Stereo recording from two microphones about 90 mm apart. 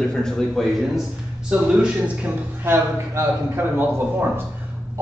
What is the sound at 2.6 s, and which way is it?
A man's voice, 25° right (ahead or behind).